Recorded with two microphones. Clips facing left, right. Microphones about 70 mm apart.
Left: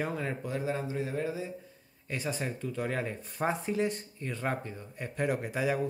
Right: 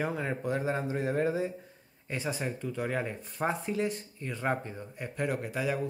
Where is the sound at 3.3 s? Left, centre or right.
Centre.